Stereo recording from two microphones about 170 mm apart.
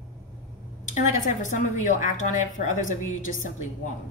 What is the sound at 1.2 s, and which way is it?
A woman's voice, 45° left (ahead or behind).